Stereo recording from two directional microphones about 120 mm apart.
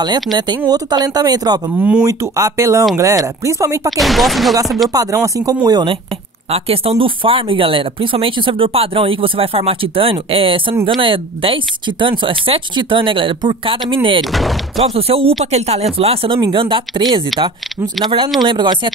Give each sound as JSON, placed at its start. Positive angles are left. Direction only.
{"t": 0.0, "sound": "speech", "side_deg": -35}
{"t": 1.8, "sound": "speech", "side_deg": -10}
{"t": 2.0, "sound": "speech", "side_deg": -30}
{"t": 4.0, "sound": "speech", "side_deg": 0}
{"t": 4.8, "sound": "speech", "side_deg": -30}
{"t": 6.5, "sound": "speech", "side_deg": -55}
{"t": 16.3, "sound": "speech", "side_deg": -40}